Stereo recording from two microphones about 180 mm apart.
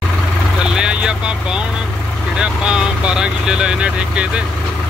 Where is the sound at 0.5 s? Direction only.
5° right (ahead or behind).